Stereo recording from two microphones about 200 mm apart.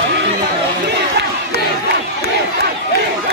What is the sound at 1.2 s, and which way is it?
Crowd, 55° right (ahead or behind).